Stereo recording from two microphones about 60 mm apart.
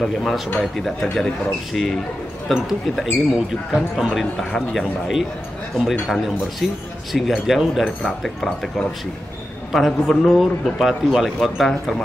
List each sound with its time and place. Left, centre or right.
0.0 s a man's voice: centre
1.7 s a man's voice: centre
9.7 s a man's voice: centre